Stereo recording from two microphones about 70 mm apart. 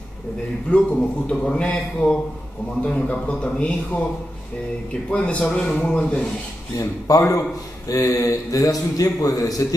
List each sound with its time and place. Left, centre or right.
0.7 s speech: centre
5.1 s speech: centre
7.1 s a man's voice: left